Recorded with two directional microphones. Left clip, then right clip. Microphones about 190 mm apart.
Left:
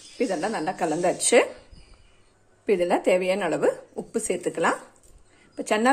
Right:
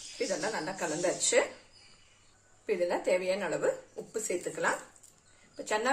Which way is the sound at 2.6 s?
50° left (ahead or behind).